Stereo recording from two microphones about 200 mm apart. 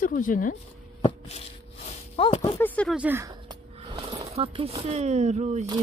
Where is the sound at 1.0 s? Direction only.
30° left (ahead or behind).